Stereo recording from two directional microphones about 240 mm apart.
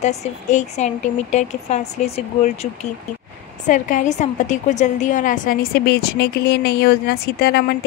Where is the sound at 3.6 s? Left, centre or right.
Left.